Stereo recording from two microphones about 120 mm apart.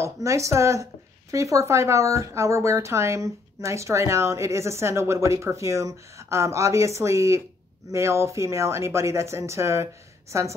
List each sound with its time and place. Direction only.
0.0 s speech: 25° right (ahead or behind)